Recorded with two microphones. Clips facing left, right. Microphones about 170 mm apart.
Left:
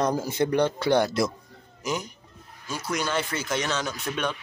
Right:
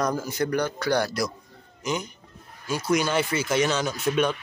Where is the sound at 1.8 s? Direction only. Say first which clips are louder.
Right 1 dB; centre (ahead or behind).